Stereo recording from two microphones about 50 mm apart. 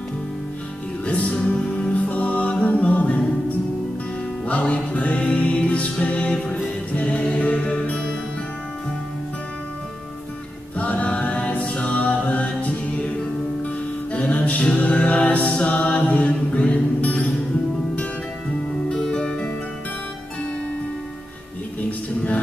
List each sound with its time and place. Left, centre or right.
1.0 s music: left
10.8 s music: left
14.1 s music: left
18.9 s music: centre